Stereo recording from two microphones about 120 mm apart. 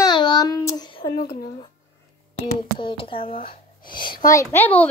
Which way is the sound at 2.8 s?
45° left (ahead or behind).